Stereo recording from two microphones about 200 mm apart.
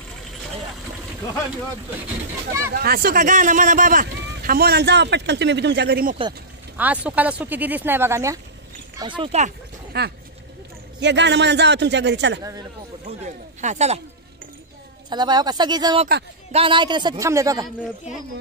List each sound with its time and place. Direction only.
2.7 s speech: 50° right (ahead or behind)
6.8 s speech: 5° right (ahead or behind)
9.0 s speech: 25° right (ahead or behind)
9.9 s a man's voice: 55° right (ahead or behind)
13.0 s speech: 35° right (ahead or behind)
15.0 s speech: 20° right (ahead or behind)